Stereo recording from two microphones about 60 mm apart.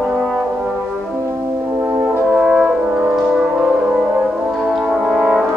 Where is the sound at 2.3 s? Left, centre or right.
Centre.